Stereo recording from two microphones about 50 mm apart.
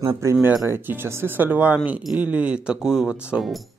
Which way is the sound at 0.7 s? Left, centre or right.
Right.